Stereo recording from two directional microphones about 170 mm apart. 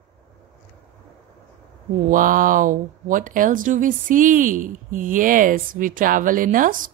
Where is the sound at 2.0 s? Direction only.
50° right (ahead or behind).